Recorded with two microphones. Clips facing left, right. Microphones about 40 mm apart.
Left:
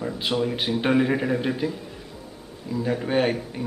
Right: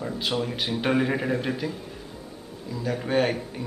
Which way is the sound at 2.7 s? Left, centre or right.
Left.